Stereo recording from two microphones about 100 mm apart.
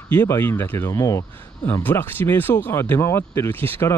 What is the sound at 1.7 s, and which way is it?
Speech, 20° left (ahead or behind).